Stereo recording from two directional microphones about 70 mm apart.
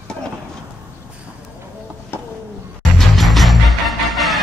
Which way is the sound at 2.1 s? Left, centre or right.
Left.